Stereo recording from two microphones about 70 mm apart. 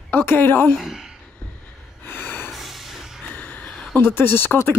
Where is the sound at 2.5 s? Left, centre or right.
Centre.